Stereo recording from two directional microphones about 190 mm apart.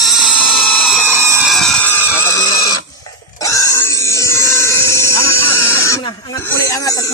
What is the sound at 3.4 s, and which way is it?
Pig, 15° left (ahead or behind).